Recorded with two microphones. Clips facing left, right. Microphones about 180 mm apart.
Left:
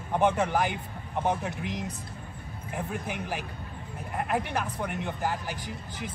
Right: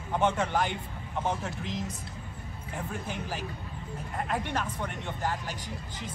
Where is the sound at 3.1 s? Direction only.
10° left (ahead or behind).